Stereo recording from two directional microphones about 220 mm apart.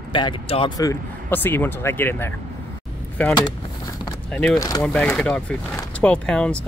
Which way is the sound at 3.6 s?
20° left (ahead or behind).